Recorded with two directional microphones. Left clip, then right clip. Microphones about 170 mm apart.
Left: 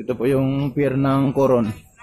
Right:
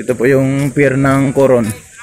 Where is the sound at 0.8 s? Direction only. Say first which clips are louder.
Right 7 dB; centre (ahead or behind).